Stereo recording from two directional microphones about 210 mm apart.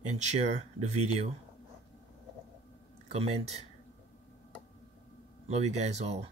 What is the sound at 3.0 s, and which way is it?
Speech, 30° right (ahead or behind).